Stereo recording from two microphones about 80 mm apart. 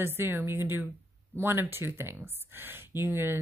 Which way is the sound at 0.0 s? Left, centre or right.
Right.